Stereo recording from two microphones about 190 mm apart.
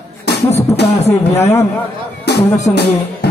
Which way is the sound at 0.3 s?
60° left (ahead or behind).